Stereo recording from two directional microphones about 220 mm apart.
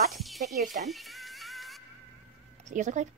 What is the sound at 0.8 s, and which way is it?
Music, centre (ahead or behind).